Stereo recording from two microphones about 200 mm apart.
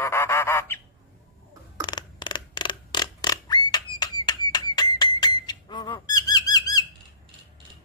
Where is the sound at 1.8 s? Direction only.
20° left (ahead or behind).